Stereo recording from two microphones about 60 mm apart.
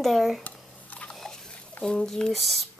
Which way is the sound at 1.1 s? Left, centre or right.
Centre.